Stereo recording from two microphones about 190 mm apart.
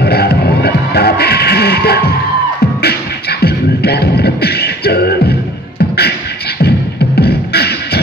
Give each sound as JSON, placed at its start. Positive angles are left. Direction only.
{"t": 0.0, "sound": "music", "side_deg": 55}
{"t": 2.8, "sound": "beatboxing", "side_deg": 55}